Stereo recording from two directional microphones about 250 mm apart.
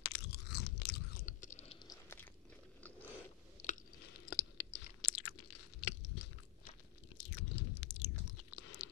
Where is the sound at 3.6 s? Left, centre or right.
Left.